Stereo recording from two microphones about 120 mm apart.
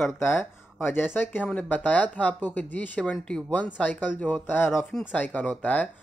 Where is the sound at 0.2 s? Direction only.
20° left (ahead or behind).